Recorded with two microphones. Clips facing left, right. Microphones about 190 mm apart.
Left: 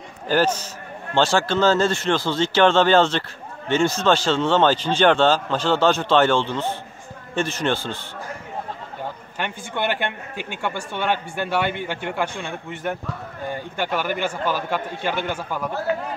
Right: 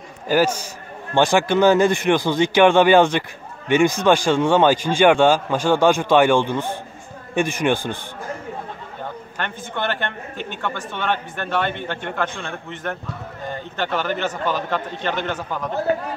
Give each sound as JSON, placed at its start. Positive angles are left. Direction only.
{"t": 0.3, "sound": "a man's voice", "side_deg": -10}
{"t": 9.4, "sound": "a man's voice", "side_deg": 15}